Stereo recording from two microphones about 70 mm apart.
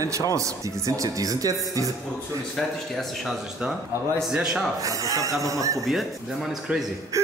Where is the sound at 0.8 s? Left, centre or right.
Right.